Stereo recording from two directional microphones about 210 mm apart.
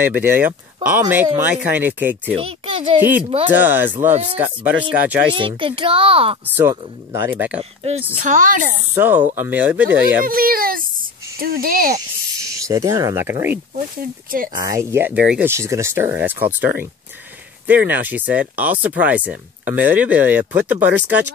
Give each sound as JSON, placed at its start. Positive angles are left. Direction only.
{"t": 0.0, "sound": "speech", "side_deg": -10}
{"t": 2.3, "sound": "a child's voice", "side_deg": -25}
{"t": 3.0, "sound": "speech", "side_deg": -10}
{"t": 4.1, "sound": "speech", "side_deg": -30}
{"t": 4.4, "sound": "speech", "side_deg": -5}
{"t": 5.3, "sound": "a child's voice", "side_deg": -25}
{"t": 6.4, "sound": "speech", "side_deg": -10}
{"t": 8.2, "sound": "speech", "side_deg": -35}
{"t": 8.9, "sound": "speech", "side_deg": -10}
{"t": 10.2, "sound": "speech", "side_deg": -45}
{"t": 12.4, "sound": "speech", "side_deg": -15}